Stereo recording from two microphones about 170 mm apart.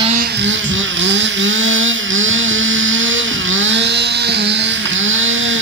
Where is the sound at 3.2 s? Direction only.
90° right.